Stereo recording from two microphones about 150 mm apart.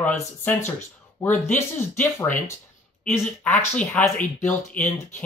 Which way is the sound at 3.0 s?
10° left (ahead or behind).